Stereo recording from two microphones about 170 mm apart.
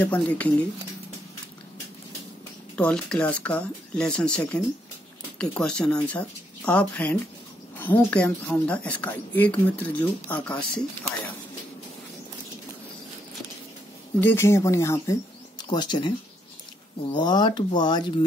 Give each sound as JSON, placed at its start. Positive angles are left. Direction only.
{"t": 0.0, "sound": "speech", "side_deg": 10}
{"t": 2.7, "sound": "speech", "side_deg": 5}
{"t": 14.2, "sound": "speech", "side_deg": 15}
{"t": 17.1, "sound": "speech", "side_deg": 25}